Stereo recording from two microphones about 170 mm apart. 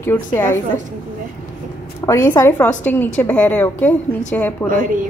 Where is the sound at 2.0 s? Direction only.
15° left (ahead or behind).